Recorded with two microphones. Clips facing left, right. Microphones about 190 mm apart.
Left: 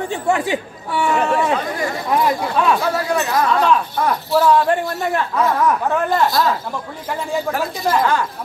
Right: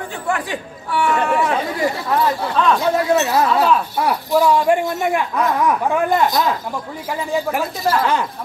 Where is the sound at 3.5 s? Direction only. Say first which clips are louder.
Even; 5° right (ahead or behind).